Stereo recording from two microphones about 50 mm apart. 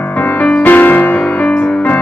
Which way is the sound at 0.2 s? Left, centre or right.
Left.